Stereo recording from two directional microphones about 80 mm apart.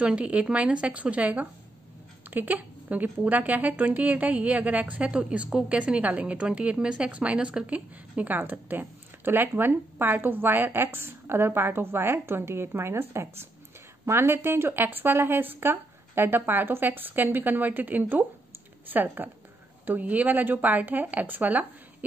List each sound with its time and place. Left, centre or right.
0.0 s a woman's voice: centre